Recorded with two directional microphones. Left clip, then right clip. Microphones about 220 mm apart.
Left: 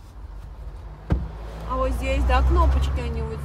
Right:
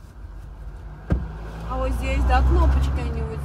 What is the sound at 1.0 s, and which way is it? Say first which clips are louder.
Vehicle: right 1 dB; 45° left (ahead or behind).